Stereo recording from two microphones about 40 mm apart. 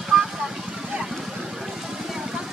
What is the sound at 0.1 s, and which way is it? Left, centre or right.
Vehicle, right.